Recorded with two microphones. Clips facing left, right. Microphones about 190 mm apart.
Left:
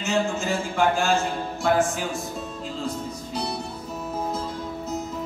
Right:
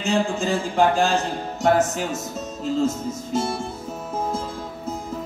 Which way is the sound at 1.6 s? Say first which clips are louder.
Right 3 dB; 40° right (ahead or behind).